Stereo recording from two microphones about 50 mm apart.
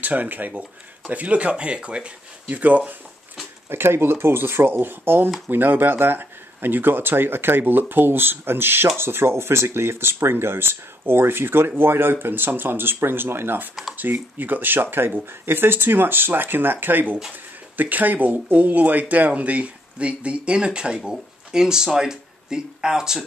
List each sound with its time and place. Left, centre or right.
0.0 s speech: right
3.6 s speech: right; by 23.2 s centre